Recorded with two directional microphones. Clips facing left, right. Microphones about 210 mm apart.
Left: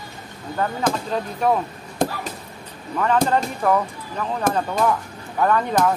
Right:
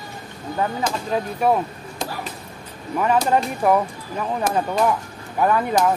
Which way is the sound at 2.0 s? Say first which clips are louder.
Left 7 dB; 55° left (ahead or behind).